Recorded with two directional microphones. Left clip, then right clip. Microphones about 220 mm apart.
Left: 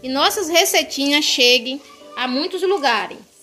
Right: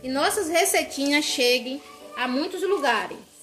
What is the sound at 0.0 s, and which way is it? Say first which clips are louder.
Speech: left 6 dB; 35° left (ahead or behind).